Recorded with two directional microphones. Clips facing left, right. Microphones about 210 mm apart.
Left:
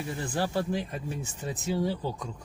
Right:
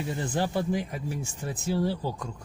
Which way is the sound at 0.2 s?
20° right (ahead or behind).